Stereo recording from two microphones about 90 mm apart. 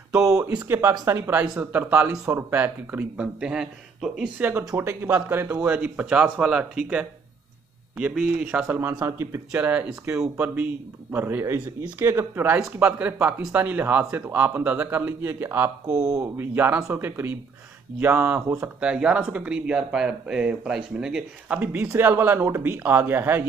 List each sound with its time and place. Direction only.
0.7 s speech: 25° right (ahead or behind); by 4.3 s 10° right (ahead or behind)
4.4 s speech: 20° right (ahead or behind)
8.1 s speech: 10° right (ahead or behind)
8.6 s speech: 30° right (ahead or behind)
9.6 s speech: 20° right (ahead or behind)
12.8 s speech: 15° right (ahead or behind)
18.8 s speech: 10° right (ahead or behind)
21.8 s speech: 25° right (ahead or behind)